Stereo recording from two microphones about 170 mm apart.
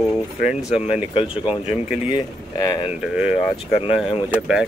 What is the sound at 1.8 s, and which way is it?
Speech, 5° right (ahead or behind).